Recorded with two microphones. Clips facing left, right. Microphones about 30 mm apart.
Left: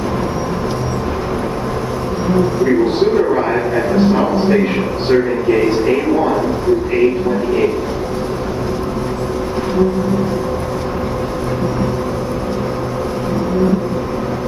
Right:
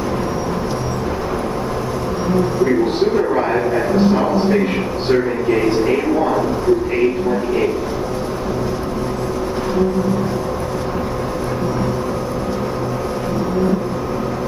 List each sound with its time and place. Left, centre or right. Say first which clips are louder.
3.2 s a man's voice: left 2 dB; centre